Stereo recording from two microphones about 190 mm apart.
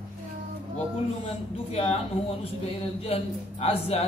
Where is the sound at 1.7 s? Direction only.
30° left (ahead or behind).